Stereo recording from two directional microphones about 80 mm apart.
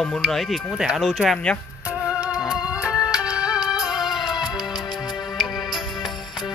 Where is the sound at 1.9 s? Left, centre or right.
Centre.